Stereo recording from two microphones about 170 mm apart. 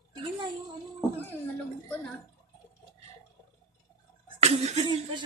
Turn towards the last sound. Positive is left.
turn(degrees=-40)  # may be behind; listen again after turning